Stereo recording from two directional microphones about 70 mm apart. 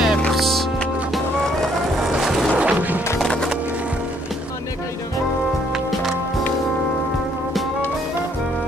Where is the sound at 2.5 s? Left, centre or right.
Right.